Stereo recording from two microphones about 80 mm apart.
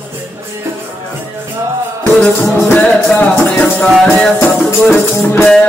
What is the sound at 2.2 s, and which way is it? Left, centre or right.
Music, centre.